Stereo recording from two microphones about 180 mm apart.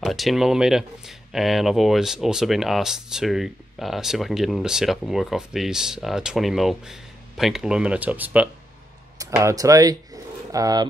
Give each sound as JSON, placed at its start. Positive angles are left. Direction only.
{"t": 0.0, "sound": "speech", "side_deg": 0}